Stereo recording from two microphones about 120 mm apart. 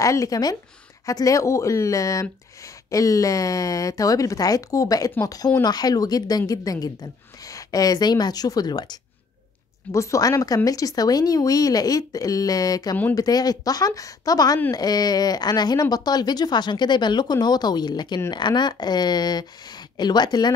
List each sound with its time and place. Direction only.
0.0 s speech: 25° left (ahead or behind)
9.9 s speech: 25° left (ahead or behind)